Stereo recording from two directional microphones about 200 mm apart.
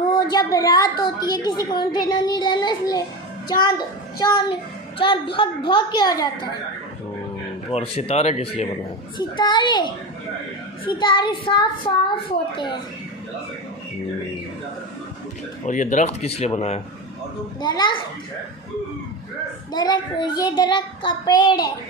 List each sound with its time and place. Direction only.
0.1 s a child's voice: 20° left (ahead or behind)
4.2 s a child's voice: 20° left (ahead or behind)
7.7 s a child's voice: 30° left (ahead or behind)
15.6 s speech: 40° left (ahead or behind)
17.6 s a child's voice: 20° left (ahead or behind)
19.7 s a child's voice: 20° left (ahead or behind)